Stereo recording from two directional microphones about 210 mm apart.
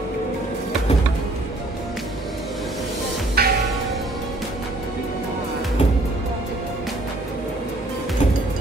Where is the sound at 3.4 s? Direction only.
50° right (ahead or behind).